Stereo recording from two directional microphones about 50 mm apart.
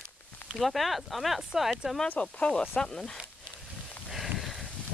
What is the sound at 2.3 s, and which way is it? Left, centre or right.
Speech, centre.